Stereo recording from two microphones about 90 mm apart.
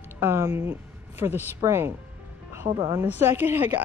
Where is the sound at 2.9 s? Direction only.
25° right (ahead or behind).